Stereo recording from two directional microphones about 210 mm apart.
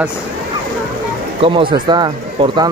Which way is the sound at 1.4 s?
25° right (ahead or behind).